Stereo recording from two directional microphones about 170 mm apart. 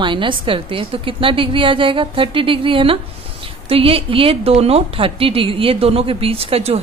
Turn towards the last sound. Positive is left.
turn(degrees=-35)  # may be behind; listen again after turning